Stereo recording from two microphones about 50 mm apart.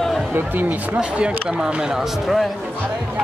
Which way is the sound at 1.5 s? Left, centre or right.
Centre.